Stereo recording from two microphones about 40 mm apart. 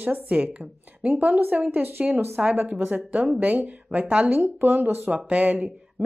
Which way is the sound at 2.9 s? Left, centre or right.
Right.